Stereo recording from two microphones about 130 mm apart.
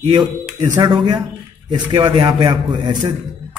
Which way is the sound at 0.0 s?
40° right (ahead or behind).